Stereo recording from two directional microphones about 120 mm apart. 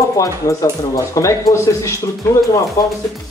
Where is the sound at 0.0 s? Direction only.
25° left (ahead or behind).